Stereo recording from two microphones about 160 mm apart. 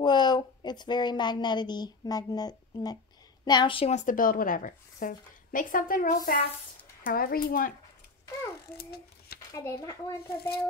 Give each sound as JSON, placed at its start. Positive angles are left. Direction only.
{"t": 0.0, "sound": "a woman's voice", "side_deg": 25}
{"t": 8.7, "sound": "a child's voice", "side_deg": 80}
{"t": 9.5, "sound": "a woman's voice", "side_deg": 20}